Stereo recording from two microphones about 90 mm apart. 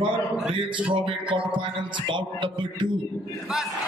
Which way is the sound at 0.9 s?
65° right (ahead or behind).